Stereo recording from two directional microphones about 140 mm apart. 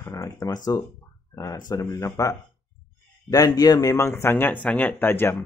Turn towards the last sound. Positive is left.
turn(degrees=15)  # may be behind; listen again after turning